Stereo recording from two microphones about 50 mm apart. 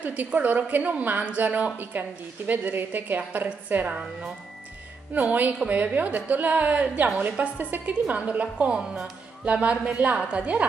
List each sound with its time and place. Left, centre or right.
0.0 s a woman's voice: right
3.4 s a woman's voice: right
5.1 s a woman's voice: right